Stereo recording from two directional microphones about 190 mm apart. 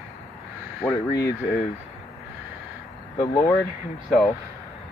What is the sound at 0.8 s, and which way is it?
Speech, 15° left (ahead or behind).